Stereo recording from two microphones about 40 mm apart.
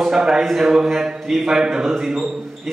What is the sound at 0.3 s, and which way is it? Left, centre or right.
A man's voice, centre.